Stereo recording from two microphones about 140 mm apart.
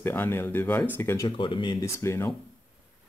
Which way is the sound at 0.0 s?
15° left (ahead or behind).